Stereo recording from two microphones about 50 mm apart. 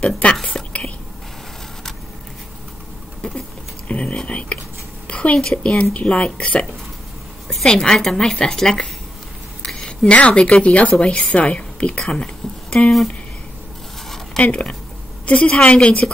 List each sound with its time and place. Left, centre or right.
0.0 s a woman's voice: left
0.4 s whispering: centre
3.9 s a woman's voice: left
7.6 s a woman's voice: centre
14.0 s zipper: centre
14.4 s a woman's voice: left